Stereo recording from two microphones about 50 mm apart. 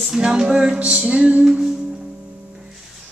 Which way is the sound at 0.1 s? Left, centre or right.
Centre.